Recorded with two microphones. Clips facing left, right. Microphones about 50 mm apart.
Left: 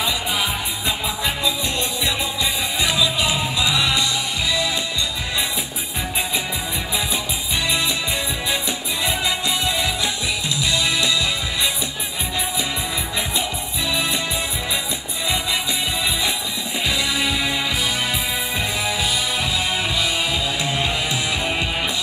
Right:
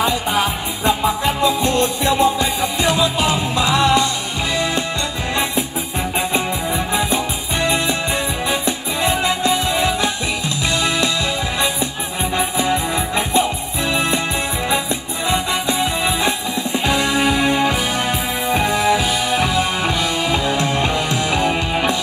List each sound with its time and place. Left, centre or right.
0.3 s music: right
7.6 s music: right
12.4 s music: right
15.8 s music: right
18.9 s music: right
19.4 s music: right